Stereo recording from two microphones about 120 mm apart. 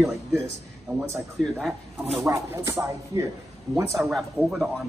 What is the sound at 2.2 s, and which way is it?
Speech, 25° right (ahead or behind).